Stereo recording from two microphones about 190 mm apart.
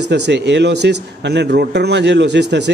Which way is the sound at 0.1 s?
65° right (ahead or behind).